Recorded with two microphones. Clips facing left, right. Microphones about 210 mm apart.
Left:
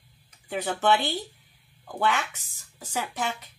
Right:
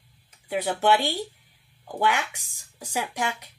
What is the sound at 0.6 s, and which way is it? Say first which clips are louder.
Speech: right 2 dB; 10° right (ahead or behind).